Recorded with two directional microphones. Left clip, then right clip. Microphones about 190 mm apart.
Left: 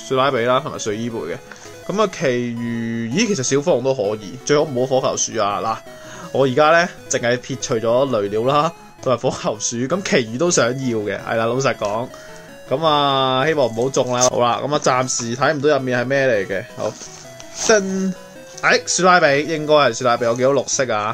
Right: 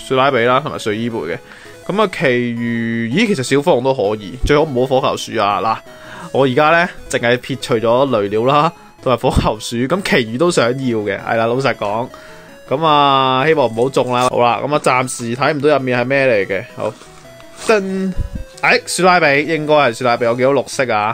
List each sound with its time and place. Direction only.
0.1 s speech: 20° right (ahead or behind)